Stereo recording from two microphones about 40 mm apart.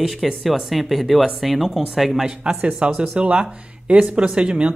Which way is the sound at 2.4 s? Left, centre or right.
Right.